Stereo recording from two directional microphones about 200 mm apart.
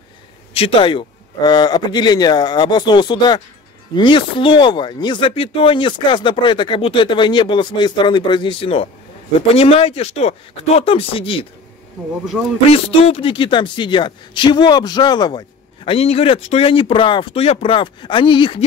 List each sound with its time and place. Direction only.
0.6 s speech: 30° left (ahead or behind)
12.3 s speech: 5° right (ahead or behind)
12.7 s speech: 30° left (ahead or behind)